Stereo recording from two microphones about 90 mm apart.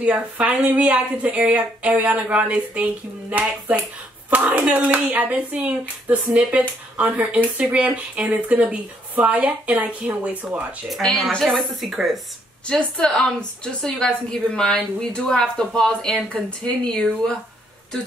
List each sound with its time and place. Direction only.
0.0 s speech: 15° right (ahead or behind)
11.0 s a woman's voice: centre (ahead or behind)
12.6 s a woman's voice: 10° left (ahead or behind)